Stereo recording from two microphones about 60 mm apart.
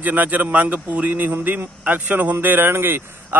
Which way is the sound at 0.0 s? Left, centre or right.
Right.